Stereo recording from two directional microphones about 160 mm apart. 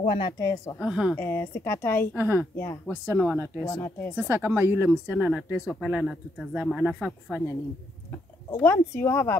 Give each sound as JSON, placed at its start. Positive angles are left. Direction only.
{"t": 0.0, "sound": "speech", "side_deg": 35}
{"t": 0.4, "sound": "a woman's voice", "side_deg": 20}
{"t": 0.7, "sound": "speech", "side_deg": -5}
{"t": 1.1, "sound": "a woman's voice", "side_deg": 15}
{"t": 2.1, "sound": "speech", "side_deg": -15}
{"t": 2.5, "sound": "a woman's voice", "side_deg": 15}
{"t": 4.1, "sound": "speech", "side_deg": -10}
{"t": 8.5, "sound": "a woman's voice", "side_deg": 15}